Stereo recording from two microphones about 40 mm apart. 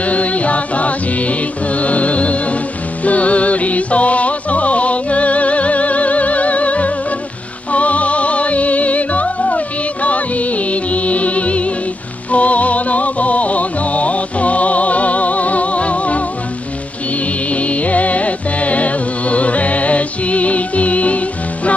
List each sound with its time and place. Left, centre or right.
0.0 s music: left
17.5 s music: left